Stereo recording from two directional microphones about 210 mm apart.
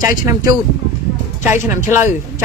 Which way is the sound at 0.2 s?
15° right (ahead or behind).